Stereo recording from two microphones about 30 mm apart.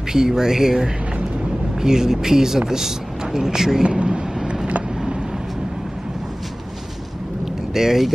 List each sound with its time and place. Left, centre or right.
0.1 s speech: centre
3.8 s a sound: right
7.7 s speech: centre